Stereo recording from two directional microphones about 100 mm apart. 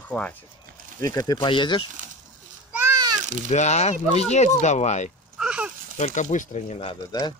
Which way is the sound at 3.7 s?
90° left.